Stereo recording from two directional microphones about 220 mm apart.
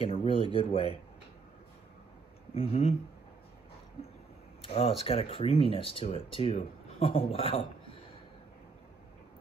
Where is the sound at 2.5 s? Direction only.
30° left (ahead or behind).